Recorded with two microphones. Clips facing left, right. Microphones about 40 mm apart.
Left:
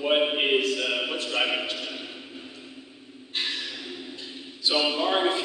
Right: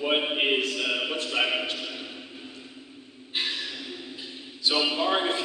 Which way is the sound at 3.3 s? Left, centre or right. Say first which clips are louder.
Even; centre.